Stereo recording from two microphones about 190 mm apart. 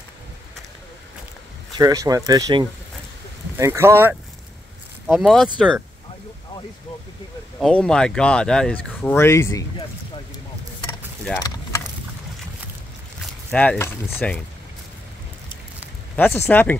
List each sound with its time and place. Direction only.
1.8 s speech: 20° right (ahead or behind)
5.0 s speech: centre (ahead or behind)
7.6 s speech: 5° left (ahead or behind)
11.4 s vehicle: 15° left (ahead or behind)
13.5 s speech: 10° left (ahead or behind)
16.2 s speech: 10° left (ahead or behind)